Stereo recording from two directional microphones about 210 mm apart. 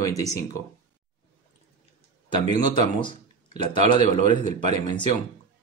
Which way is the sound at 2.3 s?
20° left (ahead or behind).